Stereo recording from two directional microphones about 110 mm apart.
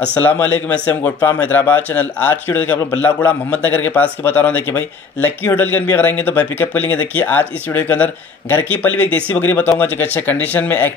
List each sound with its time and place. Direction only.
0.1 s a man's voice: 20° left (ahead or behind)